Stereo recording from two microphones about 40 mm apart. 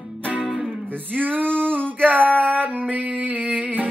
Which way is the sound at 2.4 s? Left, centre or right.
Right.